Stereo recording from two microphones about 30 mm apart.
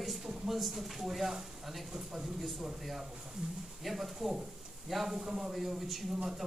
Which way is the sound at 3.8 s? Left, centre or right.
Centre.